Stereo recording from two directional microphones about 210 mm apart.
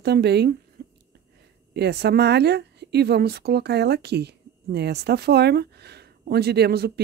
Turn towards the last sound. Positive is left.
turn(degrees=-50)  # may be behind; listen again after turning